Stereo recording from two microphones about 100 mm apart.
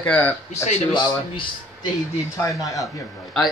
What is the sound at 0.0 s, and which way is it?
Speech, 15° left (ahead or behind).